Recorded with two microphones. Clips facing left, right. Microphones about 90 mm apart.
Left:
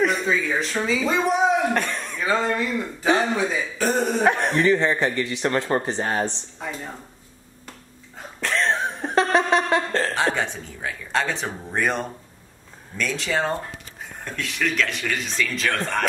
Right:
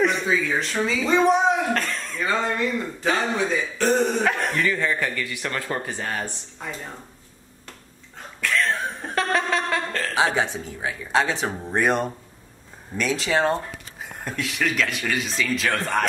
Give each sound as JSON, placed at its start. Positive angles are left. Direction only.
{"t": 0.0, "sound": "a man's voice", "side_deg": 0}
{"t": 1.7, "sound": "speech", "side_deg": 15}
{"t": 2.2, "sound": "speech", "side_deg": 0}
{"t": 4.2, "sound": "a man's voice", "side_deg": 25}
{"t": 8.4, "sound": "chuckle", "side_deg": 30}
{"t": 10.1, "sound": "speech", "side_deg": -5}